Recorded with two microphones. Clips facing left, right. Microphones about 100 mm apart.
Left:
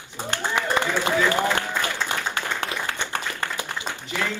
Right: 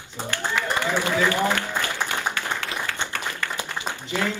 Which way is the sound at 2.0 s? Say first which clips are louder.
Even; 15° right (ahead or behind).